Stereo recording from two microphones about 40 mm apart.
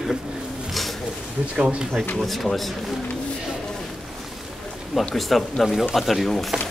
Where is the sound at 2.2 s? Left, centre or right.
Centre.